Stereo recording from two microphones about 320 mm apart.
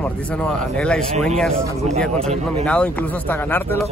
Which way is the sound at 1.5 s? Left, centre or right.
Centre.